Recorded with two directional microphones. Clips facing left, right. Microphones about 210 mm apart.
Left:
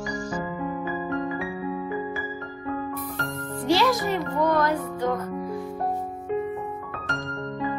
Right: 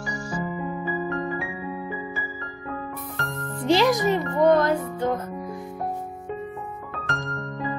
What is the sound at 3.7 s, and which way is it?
A child's voice, 20° right (ahead or behind).